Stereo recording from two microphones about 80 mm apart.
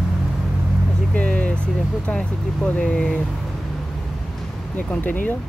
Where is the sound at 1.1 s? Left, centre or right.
Centre.